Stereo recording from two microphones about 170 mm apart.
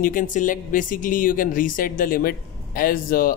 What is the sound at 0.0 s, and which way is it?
A woman's voice, 50° left (ahead or behind).